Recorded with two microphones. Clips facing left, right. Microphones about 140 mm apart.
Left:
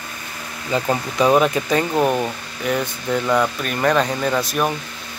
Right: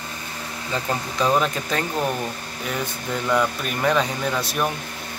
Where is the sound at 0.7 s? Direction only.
15° left (ahead or behind).